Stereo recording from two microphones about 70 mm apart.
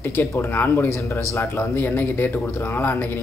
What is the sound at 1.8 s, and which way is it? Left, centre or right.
Speech, left.